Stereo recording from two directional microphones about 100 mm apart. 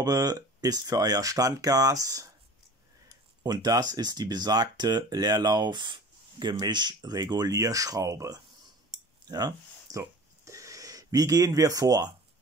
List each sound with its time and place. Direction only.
0.0 s speech: 40° right (ahead or behind)
3.4 s speech: 40° right (ahead or behind)
9.3 s a sound: 40° right (ahead or behind)